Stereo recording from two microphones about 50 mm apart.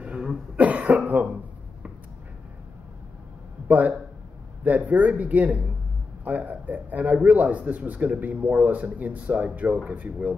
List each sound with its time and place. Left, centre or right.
0.0 s cough: right
3.6 s a man's voice: right